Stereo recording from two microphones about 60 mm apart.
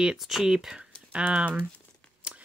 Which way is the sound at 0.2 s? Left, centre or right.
Centre.